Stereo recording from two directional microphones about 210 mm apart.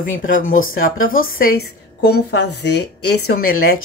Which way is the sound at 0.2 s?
40° left (ahead or behind).